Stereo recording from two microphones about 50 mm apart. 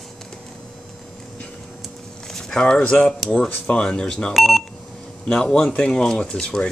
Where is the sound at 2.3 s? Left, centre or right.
Centre.